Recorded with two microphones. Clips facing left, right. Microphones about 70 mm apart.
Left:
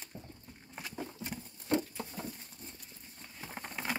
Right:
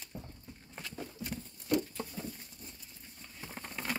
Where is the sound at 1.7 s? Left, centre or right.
Left.